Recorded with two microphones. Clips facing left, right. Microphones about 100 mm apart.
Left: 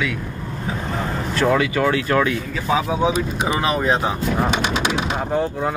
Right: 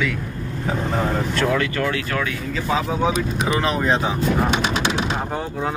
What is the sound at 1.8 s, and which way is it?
Speech, 25° left (ahead or behind).